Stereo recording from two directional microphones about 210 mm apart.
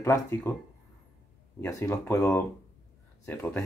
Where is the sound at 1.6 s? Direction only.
15° left (ahead or behind).